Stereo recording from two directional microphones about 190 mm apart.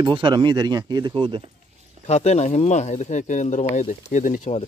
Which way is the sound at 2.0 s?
35° left (ahead or behind).